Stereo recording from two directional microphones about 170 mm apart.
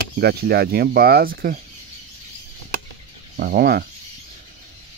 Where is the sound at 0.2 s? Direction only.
75° right (ahead or behind).